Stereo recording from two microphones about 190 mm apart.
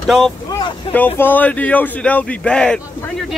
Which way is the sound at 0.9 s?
10° left (ahead or behind).